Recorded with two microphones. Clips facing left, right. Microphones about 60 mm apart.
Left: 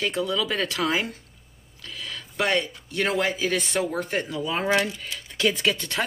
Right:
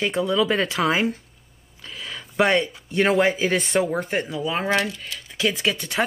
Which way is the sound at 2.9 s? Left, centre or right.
Right.